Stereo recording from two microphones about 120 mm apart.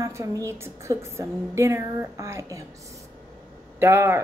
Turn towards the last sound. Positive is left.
turn(degrees=-20)  # may be behind; listen again after turning